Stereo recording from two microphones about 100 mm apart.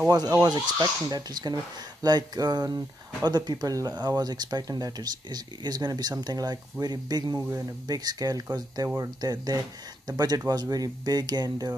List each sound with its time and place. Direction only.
0.3 s speech: 40° right (ahead or behind)